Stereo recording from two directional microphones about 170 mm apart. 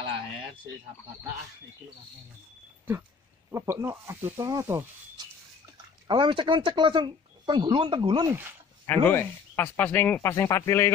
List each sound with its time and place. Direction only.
3.5 s speech: 15° right (ahead or behind)
6.0 s speech: 30° right (ahead or behind)
8.8 s speech: 10° left (ahead or behind)